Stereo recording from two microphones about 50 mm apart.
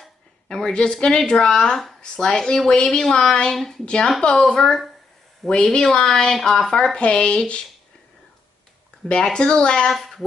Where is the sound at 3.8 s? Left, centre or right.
Centre.